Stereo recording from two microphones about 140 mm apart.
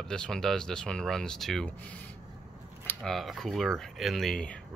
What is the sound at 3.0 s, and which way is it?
Speech, centre (ahead or behind).